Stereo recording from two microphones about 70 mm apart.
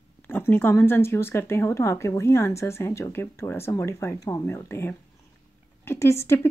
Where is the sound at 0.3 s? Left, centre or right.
Left.